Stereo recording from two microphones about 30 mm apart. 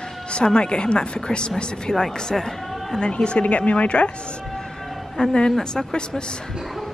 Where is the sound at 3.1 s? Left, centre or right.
Left.